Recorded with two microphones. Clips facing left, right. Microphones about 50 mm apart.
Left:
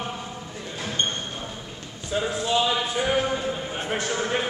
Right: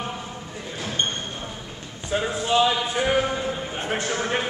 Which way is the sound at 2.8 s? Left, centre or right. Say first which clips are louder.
Right 2 dB; centre.